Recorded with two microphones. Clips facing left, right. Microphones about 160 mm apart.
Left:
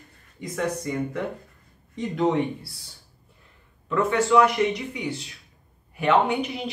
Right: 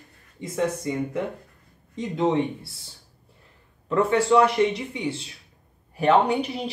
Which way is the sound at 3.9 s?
35° right (ahead or behind).